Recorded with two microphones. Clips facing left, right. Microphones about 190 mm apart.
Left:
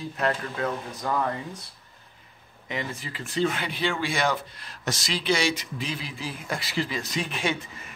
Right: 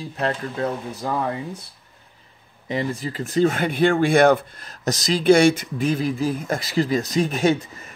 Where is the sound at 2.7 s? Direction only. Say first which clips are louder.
Right 8 dB; 35° right (ahead or behind).